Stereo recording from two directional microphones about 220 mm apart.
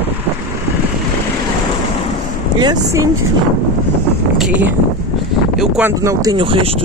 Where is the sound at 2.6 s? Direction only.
20° right (ahead or behind).